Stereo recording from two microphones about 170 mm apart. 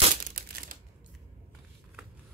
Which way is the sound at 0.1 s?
55° right (ahead or behind).